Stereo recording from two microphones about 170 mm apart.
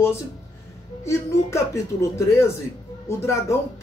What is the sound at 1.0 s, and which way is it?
Speech, 15° left (ahead or behind).